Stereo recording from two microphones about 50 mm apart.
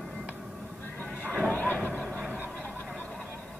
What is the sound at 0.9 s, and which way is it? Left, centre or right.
Music, left.